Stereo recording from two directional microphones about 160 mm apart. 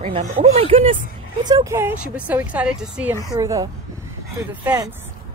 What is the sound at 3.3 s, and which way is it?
Speech, 20° right (ahead or behind).